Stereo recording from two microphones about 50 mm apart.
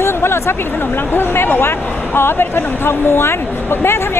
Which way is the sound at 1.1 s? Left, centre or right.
Left.